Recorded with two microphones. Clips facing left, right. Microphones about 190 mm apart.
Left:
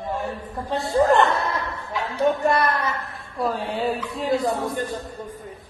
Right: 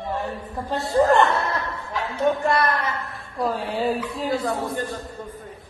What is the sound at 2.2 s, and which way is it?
Speech, 15° left (ahead or behind).